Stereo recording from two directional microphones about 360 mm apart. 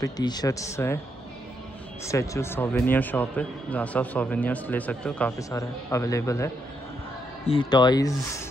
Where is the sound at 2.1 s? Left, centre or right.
Centre.